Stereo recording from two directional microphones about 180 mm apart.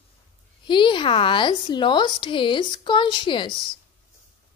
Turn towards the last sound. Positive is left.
turn(degrees=25)  # may be behind; listen again after turning